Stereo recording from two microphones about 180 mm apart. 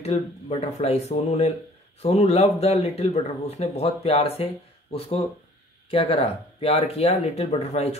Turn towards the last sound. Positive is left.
turn(degrees=35)  # may be behind; listen again after turning